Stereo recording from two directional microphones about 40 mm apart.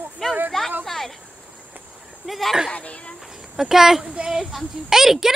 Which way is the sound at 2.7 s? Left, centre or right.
Left.